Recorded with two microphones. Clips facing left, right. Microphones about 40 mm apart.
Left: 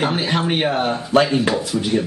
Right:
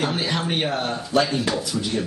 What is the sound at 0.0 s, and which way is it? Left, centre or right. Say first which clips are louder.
Speech: left 4 dB; left.